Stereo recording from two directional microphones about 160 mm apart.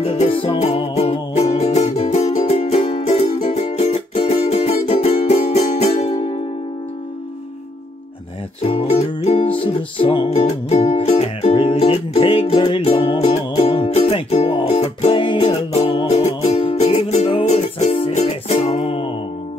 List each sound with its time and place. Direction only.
0.0 s music: 40° left (ahead or behind)
8.6 s music: 40° left (ahead or behind)
10.3 s music: 45° left (ahead or behind)